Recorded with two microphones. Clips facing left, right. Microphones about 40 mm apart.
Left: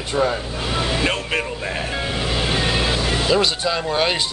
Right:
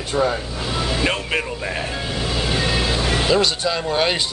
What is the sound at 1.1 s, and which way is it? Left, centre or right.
Speech, centre.